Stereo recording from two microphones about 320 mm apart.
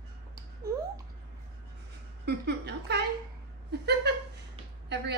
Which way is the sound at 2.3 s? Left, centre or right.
Right.